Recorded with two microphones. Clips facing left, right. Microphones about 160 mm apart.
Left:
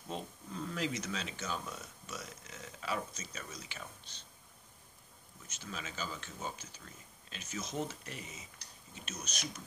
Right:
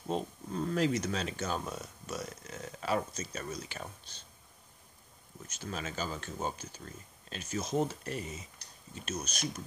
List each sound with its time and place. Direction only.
0.1 s speech: 45° right (ahead or behind)
5.6 s speech: 45° right (ahead or behind)